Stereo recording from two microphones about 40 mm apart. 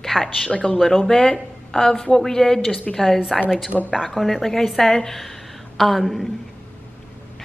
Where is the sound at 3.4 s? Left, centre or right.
Centre.